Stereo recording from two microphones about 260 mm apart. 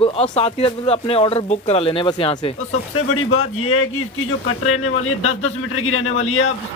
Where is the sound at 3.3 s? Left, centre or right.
Left.